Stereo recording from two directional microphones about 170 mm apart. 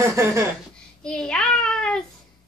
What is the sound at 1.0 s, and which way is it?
A child's voice, 5° left (ahead or behind).